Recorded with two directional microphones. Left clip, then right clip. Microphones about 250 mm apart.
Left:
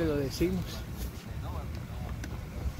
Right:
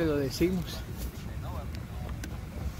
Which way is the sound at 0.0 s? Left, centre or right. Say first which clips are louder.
Right 2 dB; centre.